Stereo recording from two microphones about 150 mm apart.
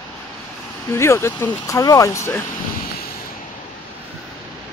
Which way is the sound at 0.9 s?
20° left (ahead or behind).